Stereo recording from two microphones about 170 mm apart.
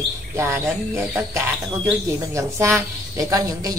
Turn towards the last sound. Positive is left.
turn(degrees=-20)  # may be behind; listen again after turning